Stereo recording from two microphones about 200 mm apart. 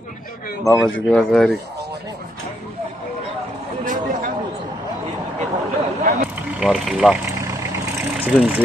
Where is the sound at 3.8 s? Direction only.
40° right (ahead or behind).